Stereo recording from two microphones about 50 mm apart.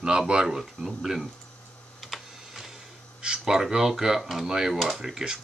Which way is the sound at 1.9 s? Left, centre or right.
Centre.